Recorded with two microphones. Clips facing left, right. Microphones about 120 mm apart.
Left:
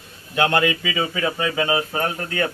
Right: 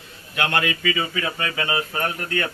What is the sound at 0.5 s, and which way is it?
A man's voice, 10° left (ahead or behind).